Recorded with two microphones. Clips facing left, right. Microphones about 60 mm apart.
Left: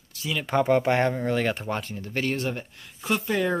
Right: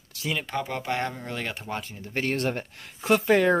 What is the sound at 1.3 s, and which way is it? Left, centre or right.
Speech, centre.